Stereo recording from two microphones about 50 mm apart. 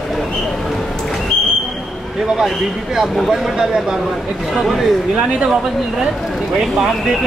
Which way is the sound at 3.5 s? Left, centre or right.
Centre.